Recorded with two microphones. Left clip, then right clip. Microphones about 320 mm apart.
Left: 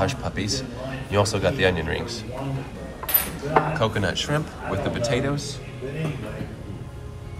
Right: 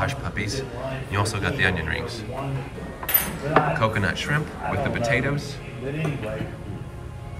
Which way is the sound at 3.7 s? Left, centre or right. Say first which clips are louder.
Even; centre.